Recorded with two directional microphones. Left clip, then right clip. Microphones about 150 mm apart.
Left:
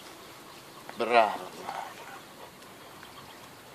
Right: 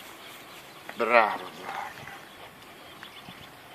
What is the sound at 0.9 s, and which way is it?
Bird, 40° right (ahead or behind).